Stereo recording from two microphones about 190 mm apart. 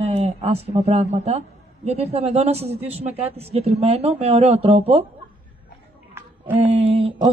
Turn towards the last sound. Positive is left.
turn(degrees=-30)  # may be behind; listen again after turning